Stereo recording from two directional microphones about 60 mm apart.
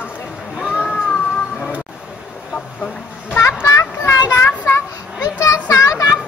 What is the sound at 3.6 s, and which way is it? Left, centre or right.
Children playing, left.